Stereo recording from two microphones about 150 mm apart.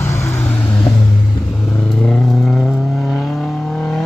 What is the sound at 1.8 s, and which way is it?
Vehicle, 5° left (ahead or behind).